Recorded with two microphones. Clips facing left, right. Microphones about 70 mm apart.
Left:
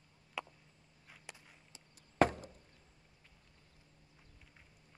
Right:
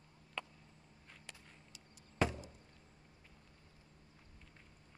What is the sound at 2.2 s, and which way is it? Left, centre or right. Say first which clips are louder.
Chop: left 6 dB; left.